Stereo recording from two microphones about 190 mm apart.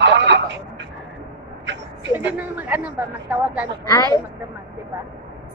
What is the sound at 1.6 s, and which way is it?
Vehicle, 70° right (ahead or behind).